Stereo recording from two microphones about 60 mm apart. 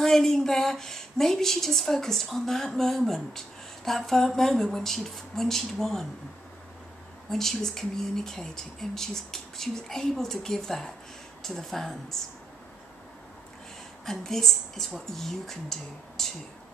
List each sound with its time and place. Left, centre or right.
0.0 s speech: centre
7.2 s speech: centre
14.0 s speech: centre